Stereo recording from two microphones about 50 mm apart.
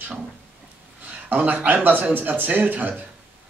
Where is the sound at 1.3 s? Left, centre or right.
Right.